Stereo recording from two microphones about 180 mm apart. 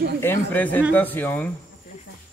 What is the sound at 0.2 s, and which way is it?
Speech, 10° left (ahead or behind).